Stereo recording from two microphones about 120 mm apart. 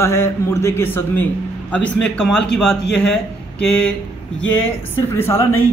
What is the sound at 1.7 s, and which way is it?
A man's voice, 5° left (ahead or behind).